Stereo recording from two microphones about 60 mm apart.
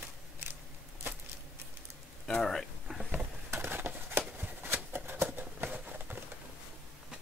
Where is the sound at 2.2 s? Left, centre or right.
Centre.